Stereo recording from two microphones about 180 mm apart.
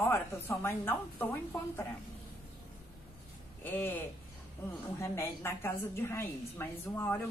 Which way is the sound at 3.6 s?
10° left (ahead or behind).